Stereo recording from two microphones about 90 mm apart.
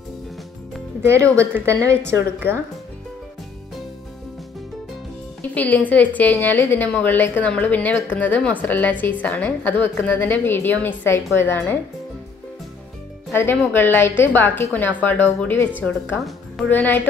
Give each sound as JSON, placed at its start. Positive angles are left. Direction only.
{"t": 1.0, "sound": "a woman's voice", "side_deg": -35}
{"t": 5.4, "sound": "a woman's voice", "side_deg": 15}
{"t": 13.3, "sound": "a woman's voice", "side_deg": 25}
{"t": 16.2, "sound": "music", "side_deg": 0}
{"t": 16.6, "sound": "a woman's voice", "side_deg": 20}